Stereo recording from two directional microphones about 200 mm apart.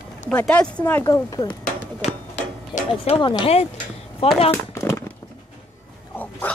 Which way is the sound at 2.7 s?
30° left (ahead or behind).